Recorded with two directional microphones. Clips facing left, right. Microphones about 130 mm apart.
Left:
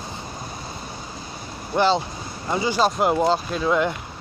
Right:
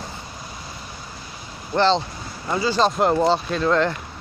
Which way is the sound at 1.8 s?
10° left (ahead or behind).